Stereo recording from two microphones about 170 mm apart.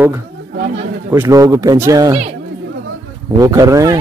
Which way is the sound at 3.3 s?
20° right (ahead or behind).